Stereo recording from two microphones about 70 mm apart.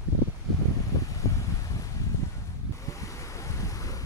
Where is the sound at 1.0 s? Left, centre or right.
Left.